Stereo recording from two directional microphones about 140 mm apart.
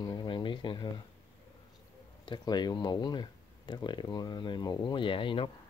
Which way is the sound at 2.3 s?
30° left (ahead or behind).